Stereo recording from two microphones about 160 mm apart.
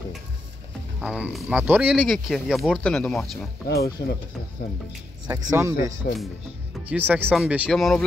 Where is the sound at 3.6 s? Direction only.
80° left.